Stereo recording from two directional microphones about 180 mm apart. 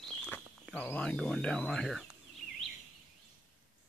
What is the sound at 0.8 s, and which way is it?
Speech, 5° left (ahead or behind).